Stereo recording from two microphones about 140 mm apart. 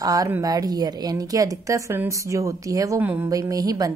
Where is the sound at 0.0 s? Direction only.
25° right (ahead or behind).